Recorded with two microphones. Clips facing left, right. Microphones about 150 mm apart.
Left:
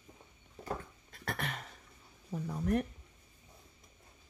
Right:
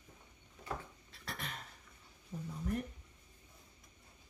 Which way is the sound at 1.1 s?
55° left (ahead or behind).